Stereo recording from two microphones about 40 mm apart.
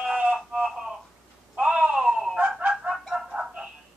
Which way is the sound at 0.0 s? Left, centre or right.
Centre.